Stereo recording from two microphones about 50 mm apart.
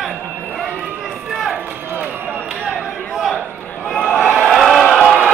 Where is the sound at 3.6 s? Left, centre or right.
Left.